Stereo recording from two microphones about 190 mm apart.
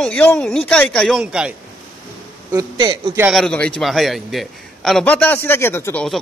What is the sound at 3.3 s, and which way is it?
A man's voice, 5° left (ahead or behind).